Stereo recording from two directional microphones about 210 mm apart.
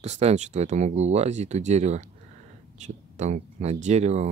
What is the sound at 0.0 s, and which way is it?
Speech, 30° right (ahead or behind).